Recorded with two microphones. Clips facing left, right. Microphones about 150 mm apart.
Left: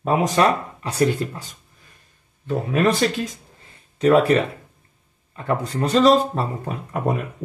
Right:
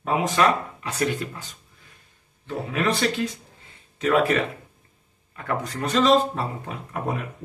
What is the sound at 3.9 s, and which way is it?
Speech, 35° left (ahead or behind).